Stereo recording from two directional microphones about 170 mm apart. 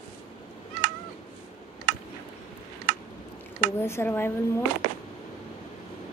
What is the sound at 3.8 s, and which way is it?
Speech, 15° left (ahead or behind).